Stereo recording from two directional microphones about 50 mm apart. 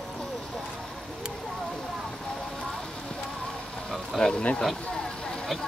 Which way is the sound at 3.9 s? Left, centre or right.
Centre.